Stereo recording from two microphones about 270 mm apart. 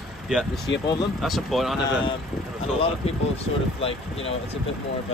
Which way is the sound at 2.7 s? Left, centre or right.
Left.